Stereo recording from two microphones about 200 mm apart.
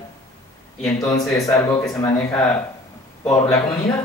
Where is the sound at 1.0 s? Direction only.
15° left (ahead or behind).